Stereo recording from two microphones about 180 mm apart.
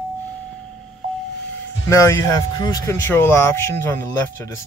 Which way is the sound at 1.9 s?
15° left (ahead or behind).